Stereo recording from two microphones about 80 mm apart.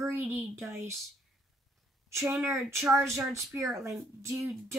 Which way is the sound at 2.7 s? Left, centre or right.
Right.